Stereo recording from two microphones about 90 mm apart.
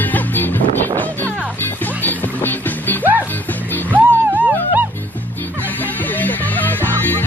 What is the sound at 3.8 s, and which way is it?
Music, 20° right (ahead or behind).